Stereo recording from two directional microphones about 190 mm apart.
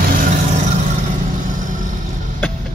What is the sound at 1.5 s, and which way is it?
Vehicle, 45° right (ahead or behind).